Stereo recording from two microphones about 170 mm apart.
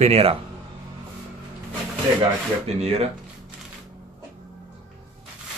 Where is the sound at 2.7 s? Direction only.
40° right (ahead or behind).